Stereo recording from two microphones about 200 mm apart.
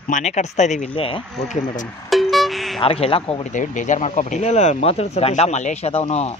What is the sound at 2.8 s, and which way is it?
Speech, 30° left (ahead or behind).